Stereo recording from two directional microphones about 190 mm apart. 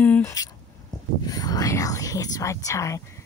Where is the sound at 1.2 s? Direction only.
20° left (ahead or behind).